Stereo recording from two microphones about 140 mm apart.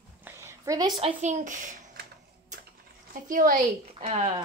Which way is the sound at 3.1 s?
75° right (ahead or behind).